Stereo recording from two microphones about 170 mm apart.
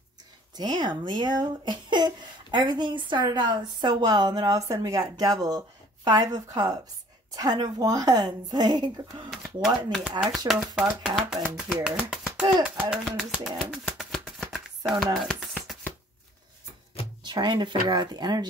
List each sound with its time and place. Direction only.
0.6 s speech: 25° right (ahead or behind)
9.3 s speech: centre (ahead or behind)
10.5 s speech: 25° right (ahead or behind)
11.1 s speech: 5° right (ahead or behind)
15.1 s a sound: centre (ahead or behind)
17.2 s speech: 25° right (ahead or behind)